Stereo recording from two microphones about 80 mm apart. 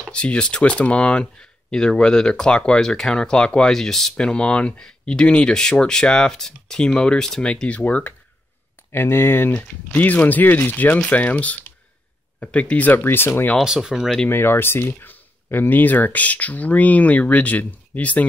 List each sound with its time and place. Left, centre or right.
0.0 s speech: centre
8.9 s speech: left
13.7 s speech: centre
14.3 s speech: left